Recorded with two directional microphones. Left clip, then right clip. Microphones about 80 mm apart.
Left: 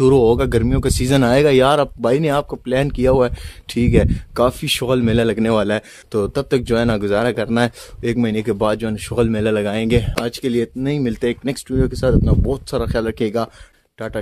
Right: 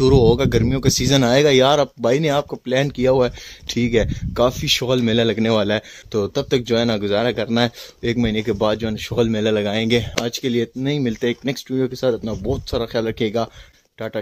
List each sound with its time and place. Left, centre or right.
0.0 s speech: left; by 10.1 s centre
10.1 s speech: centre
12.3 s speech: left
13.9 s speech: centre